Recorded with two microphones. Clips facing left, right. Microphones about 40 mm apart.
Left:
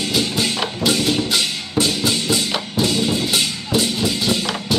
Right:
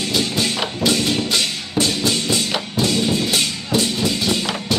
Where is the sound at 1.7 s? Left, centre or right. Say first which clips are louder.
Even; centre.